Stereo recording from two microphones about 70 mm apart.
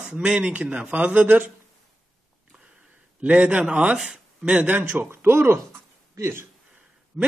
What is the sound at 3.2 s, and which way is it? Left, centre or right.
A man's voice, centre.